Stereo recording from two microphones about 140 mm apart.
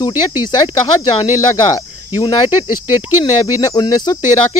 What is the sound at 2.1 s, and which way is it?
Speech, 35° left (ahead or behind).